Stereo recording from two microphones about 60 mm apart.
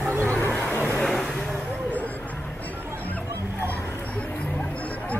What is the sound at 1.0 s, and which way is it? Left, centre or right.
Speech, centre.